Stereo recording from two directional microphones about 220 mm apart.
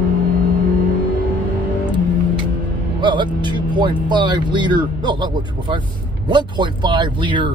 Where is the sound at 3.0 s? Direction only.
20° right (ahead or behind).